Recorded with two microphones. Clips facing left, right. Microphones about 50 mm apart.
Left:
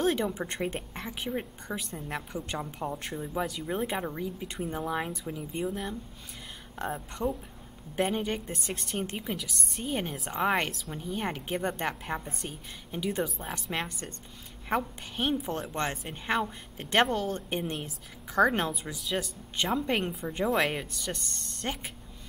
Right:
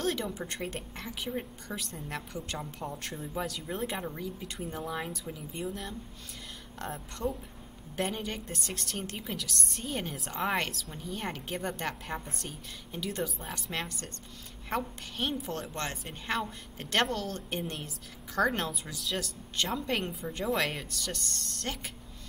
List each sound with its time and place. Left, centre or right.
0.0 s a woman's voice: left